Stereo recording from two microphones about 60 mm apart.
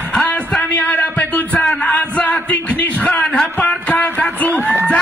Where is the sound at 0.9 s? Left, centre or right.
Left.